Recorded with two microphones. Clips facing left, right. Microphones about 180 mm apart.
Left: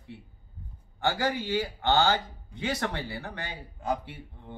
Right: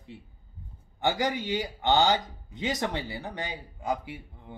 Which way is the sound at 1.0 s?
15° right (ahead or behind).